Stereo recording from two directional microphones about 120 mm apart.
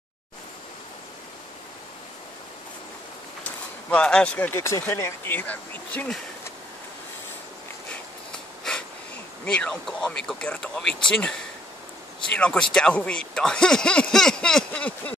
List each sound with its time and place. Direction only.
3.9 s speech: 10° left (ahead or behind)
9.5 s speech: 10° left (ahead or behind)
12.4 s speech: 10° left (ahead or behind)